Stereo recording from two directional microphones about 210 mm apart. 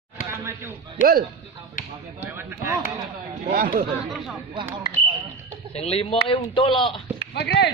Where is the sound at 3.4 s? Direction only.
40° right (ahead or behind).